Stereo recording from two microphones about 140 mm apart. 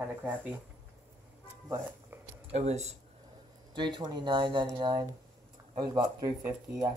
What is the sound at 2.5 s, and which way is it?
Speech, 50° right (ahead or behind).